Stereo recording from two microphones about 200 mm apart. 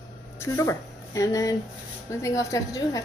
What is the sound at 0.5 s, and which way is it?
A woman's voice, 15° left (ahead or behind).